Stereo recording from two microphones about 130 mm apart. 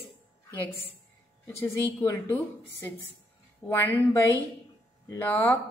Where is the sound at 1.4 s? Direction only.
15° left (ahead or behind).